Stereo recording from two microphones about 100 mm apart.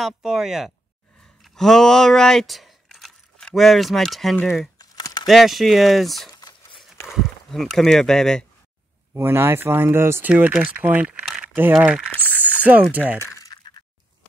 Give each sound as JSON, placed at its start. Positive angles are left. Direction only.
{"t": 0.0, "sound": "speech", "side_deg": -5}
{"t": 4.7, "sound": "crumpling", "side_deg": 40}
{"t": 5.2, "sound": "speech", "side_deg": 0}
{"t": 9.1, "sound": "speech", "side_deg": -25}
{"t": 10.3, "sound": "speech", "side_deg": -10}
{"t": 11.5, "sound": "speech", "side_deg": -20}
{"t": 13.2, "sound": "a sound", "side_deg": 40}